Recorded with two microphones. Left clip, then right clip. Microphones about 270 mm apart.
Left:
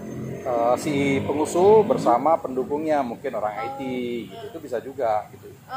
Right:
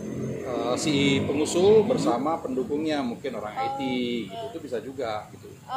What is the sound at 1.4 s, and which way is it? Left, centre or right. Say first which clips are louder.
Speech: left 3 dB; centre.